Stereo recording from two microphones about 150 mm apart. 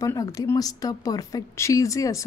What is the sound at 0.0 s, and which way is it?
A woman's voice, 20° left (ahead or behind).